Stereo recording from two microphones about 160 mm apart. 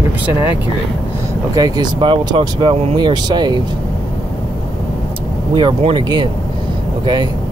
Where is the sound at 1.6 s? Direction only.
25° right (ahead or behind).